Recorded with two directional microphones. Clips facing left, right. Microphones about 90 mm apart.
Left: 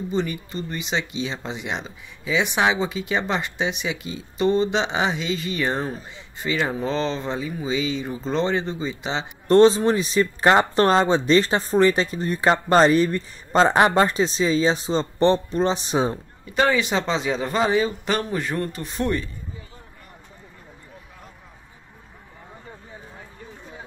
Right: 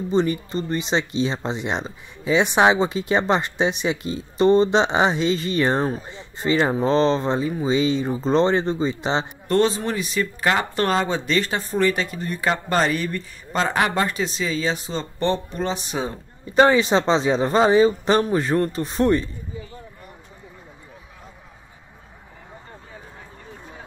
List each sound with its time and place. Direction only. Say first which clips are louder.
0.1 s speech: right 6 dB; 35° right (ahead or behind)
9.5 s speech: left 6 dB; 25° left (ahead or behind)
16.4 s speech: right 5 dB; 30° right (ahead or behind)